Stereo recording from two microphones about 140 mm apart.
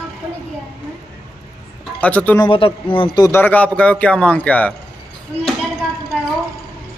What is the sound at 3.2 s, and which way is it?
Speech, 15° left (ahead or behind).